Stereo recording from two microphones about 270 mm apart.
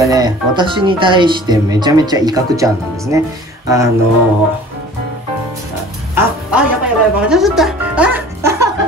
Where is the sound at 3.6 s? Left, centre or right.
Centre.